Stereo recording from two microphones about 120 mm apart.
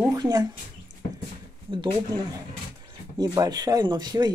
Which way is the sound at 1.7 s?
40° right (ahead or behind).